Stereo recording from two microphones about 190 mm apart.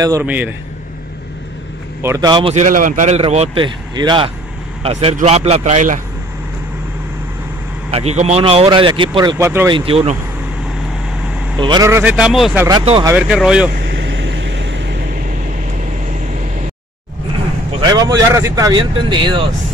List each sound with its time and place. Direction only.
0.0 s speech: 15° right (ahead or behind)
2.0 s speech: 20° right (ahead or behind)
2.5 s speech: 45° right (ahead or behind)
3.2 s speech: 30° right (ahead or behind)
7.9 s speech: 35° right (ahead or behind)
9.4 s speech: 15° right (ahead or behind)
9.7 s speech: 30° right (ahead or behind)
11.6 s speech: 20° right (ahead or behind); by 13.7 s 5° right (ahead or behind)
13.8 s vehicle: 70° right (ahead or behind)
17.7 s speech: 20° right (ahead or behind)